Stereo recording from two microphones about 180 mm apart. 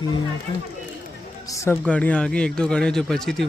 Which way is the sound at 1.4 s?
15° left (ahead or behind).